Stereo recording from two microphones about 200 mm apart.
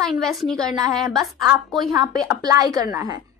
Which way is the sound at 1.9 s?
20° right (ahead or behind).